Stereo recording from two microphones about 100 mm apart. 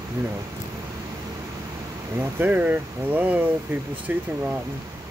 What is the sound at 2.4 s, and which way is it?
Speech, 15° right (ahead or behind).